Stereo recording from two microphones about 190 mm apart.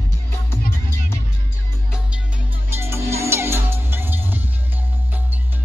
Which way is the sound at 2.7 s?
15° right (ahead or behind).